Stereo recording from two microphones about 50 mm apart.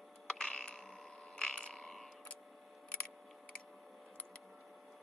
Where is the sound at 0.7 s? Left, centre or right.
Centre.